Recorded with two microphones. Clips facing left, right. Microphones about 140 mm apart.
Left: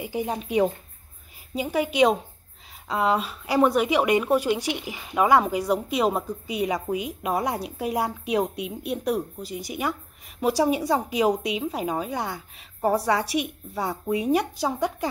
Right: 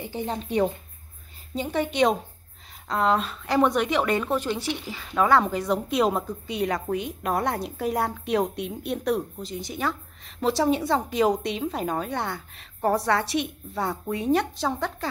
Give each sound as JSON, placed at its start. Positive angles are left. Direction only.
{"t": 0.0, "sound": "a woman's voice", "side_deg": 10}